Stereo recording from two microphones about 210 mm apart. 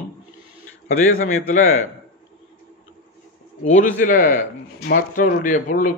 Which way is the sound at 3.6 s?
35° left (ahead or behind).